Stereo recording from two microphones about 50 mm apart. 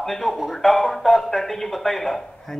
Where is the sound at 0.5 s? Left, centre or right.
Centre.